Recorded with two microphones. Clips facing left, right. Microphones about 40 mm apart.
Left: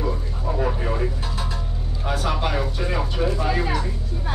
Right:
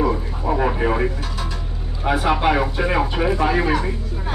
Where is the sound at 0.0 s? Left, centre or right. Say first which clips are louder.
Right 6 dB; right.